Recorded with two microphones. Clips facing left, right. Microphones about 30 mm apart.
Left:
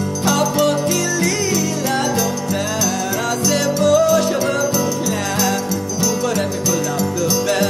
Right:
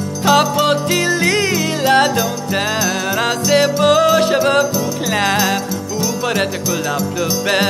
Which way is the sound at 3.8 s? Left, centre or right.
Right.